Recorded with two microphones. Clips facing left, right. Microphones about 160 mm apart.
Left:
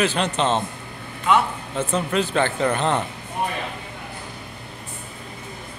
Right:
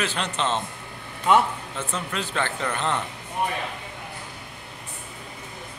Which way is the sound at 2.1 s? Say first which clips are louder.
Left 7 dB; 30° left (ahead or behind).